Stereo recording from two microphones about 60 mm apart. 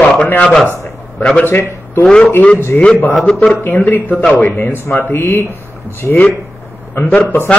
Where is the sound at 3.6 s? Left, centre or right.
Left.